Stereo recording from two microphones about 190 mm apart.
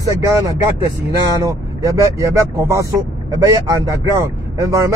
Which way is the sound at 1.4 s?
15° right (ahead or behind).